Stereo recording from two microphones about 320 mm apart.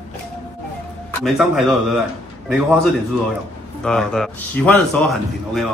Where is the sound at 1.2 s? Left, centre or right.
Centre.